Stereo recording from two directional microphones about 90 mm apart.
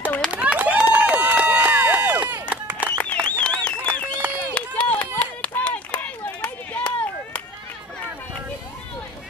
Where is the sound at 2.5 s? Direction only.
15° right (ahead or behind).